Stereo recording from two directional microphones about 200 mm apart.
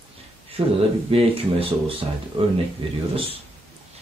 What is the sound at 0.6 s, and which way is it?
Speech, 25° right (ahead or behind).